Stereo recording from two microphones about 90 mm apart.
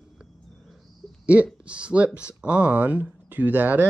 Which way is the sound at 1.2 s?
15° right (ahead or behind).